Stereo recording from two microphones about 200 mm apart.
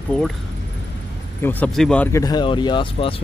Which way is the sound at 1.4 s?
10° left (ahead or behind).